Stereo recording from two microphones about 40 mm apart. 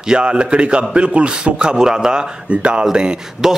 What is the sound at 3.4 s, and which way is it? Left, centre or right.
Speech, centre.